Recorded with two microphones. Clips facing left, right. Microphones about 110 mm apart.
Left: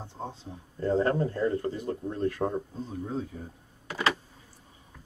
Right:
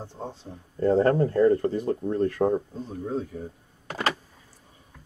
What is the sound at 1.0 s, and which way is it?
Speech, 40° right (ahead or behind).